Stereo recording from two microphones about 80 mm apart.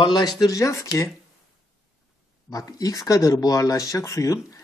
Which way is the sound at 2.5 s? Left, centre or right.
Left.